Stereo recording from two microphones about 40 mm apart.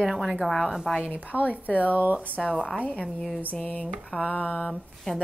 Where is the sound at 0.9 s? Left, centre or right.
Right.